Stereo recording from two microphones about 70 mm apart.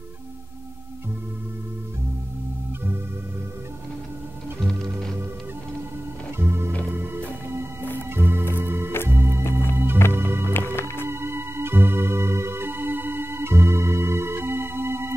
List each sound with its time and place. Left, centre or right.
6.3 s music: right
8.1 s music: right
9.4 s music: left
10.1 s music: right